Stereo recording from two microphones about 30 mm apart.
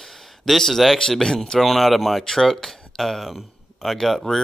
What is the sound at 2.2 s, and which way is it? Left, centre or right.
Speech, centre.